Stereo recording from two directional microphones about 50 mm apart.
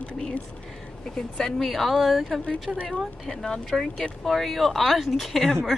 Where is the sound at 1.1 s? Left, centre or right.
Centre.